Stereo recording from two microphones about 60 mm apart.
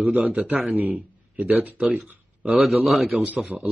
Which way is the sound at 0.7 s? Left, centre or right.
Right.